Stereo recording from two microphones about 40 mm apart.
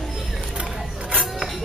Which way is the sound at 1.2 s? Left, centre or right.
Centre.